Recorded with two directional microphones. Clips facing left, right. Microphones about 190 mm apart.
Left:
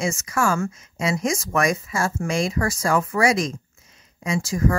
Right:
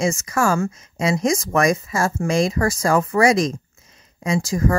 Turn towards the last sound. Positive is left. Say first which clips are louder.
# right 3 dB
turn(degrees=-40)  # may be behind; listen again after turning